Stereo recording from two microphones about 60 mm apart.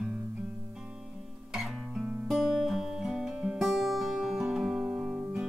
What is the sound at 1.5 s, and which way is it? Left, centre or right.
Guitar, centre.